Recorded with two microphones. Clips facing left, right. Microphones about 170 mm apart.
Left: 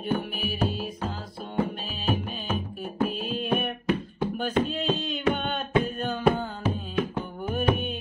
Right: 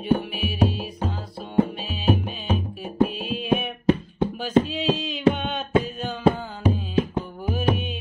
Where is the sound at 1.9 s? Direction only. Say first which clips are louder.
Right 5 dB; centre (ahead or behind).